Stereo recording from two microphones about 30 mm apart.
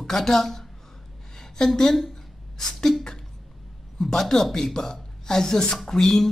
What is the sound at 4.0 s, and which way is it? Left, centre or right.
A woman's voice, centre.